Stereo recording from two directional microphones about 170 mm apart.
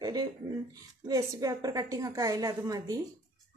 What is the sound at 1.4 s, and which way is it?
A woman's voice, 20° right (ahead or behind).